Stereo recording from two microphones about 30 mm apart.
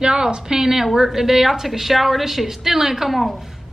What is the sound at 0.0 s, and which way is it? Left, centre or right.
A woman's voice, right.